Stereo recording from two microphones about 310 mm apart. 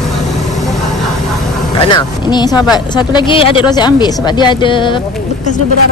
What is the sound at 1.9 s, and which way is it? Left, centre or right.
A woman's voice, centre.